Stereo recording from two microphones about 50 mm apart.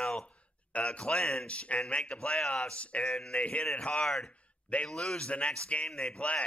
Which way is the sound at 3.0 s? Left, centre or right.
Centre.